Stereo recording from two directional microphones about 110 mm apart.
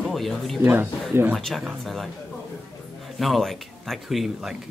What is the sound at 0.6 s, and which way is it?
Speech, 20° right (ahead or behind).